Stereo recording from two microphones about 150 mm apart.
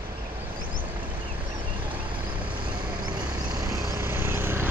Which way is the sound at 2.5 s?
30° right (ahead or behind).